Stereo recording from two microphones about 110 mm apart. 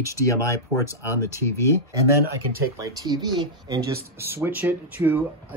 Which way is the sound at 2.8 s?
35° right (ahead or behind).